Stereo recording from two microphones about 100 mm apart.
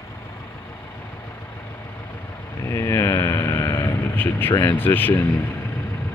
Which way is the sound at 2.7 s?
35° left (ahead or behind).